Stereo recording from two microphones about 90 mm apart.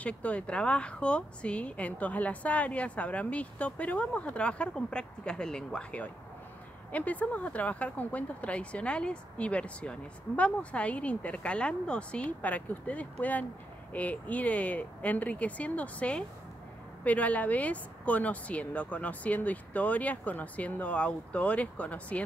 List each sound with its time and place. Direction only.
0.0 s speech: 15° left (ahead or behind)